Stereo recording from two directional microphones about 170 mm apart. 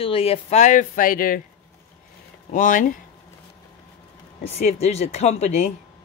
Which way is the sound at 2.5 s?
50° left (ahead or behind).